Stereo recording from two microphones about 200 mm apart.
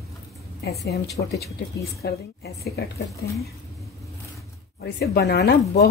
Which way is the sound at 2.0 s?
55° left (ahead or behind).